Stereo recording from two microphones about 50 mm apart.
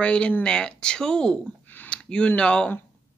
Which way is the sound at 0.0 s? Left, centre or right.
Left.